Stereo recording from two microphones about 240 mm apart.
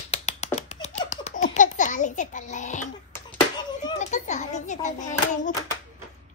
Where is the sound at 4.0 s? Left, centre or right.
Left.